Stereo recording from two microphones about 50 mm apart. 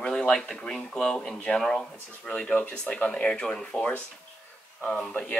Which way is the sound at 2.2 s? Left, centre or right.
Centre.